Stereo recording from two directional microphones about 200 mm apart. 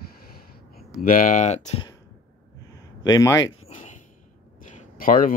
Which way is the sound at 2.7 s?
20° left (ahead or behind).